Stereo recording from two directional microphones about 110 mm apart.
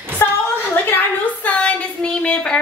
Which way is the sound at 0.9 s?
15° left (ahead or behind).